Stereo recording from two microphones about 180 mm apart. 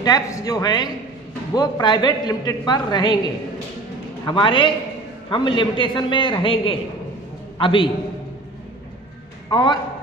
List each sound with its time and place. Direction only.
0.0 s a man's voice: 20° left (ahead or behind)
4.3 s a man's voice: 25° left (ahead or behind)
9.5 s a man's voice: 25° left (ahead or behind)